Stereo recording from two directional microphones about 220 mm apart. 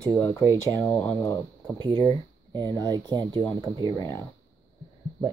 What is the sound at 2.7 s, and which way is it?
Speech, 15° right (ahead or behind).